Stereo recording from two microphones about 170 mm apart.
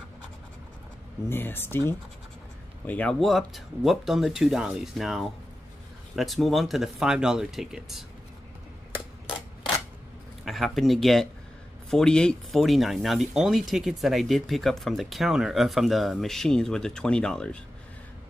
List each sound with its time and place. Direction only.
1.3 s speech: 10° left (ahead or behind)
2.9 s speech: 5° left (ahead or behind)
10.4 s speech: centre (ahead or behind)